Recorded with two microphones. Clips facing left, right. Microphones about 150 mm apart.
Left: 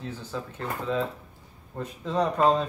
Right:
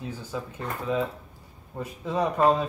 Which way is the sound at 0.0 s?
10° right (ahead or behind).